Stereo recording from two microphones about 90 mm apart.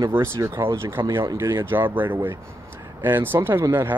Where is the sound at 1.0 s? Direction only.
60° right (ahead or behind).